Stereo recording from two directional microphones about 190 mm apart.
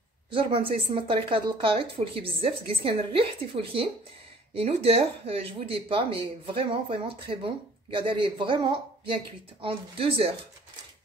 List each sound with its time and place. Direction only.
0.3 s speech: 25° right (ahead or behind)